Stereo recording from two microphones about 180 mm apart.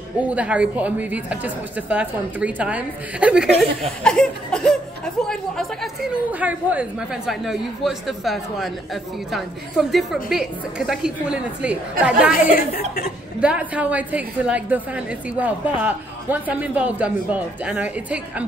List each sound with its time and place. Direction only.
0.2 s a woman's voice: 5° right (ahead or behind)
4.0 s a woman's voice: 5° left (ahead or behind)
12.3 s speech: 55° left (ahead or behind)
13.4 s a woman's voice: 5° right (ahead or behind)